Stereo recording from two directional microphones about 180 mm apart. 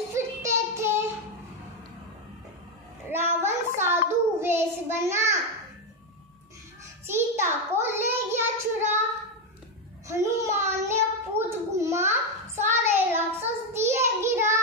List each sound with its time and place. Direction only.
0.1 s child singing: 15° right (ahead or behind)
3.1 s child singing: 15° right (ahead or behind)
7.1 s child singing: 15° right (ahead or behind)
10.0 s a sound: 15° right (ahead or behind)
13.8 s child singing: 15° right (ahead or behind)